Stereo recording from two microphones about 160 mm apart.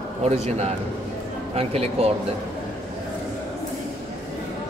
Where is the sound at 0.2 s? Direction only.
45° right (ahead or behind).